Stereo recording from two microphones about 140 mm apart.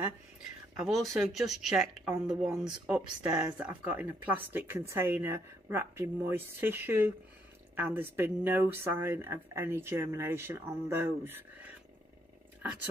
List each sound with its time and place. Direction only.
0.7 s speech: centre (ahead or behind)